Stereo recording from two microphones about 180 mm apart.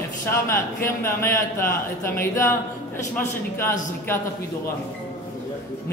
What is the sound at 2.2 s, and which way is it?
Speech, 15° left (ahead or behind).